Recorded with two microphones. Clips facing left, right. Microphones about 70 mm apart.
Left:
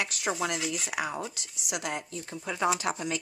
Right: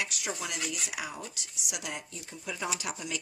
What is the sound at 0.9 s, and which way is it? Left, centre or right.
Speech, left.